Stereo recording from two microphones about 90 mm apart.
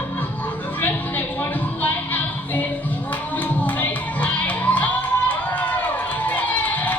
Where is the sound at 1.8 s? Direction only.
20° left (ahead or behind).